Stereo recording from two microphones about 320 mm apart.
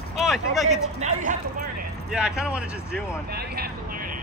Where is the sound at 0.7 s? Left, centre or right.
Right.